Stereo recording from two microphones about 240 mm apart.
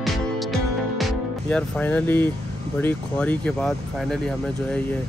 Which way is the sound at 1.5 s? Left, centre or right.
Centre.